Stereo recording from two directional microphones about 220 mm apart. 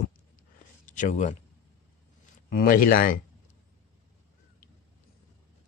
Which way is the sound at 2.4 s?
40° left (ahead or behind).